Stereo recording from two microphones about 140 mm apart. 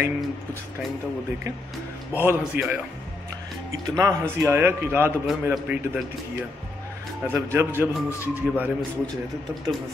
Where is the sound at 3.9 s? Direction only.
20° right (ahead or behind).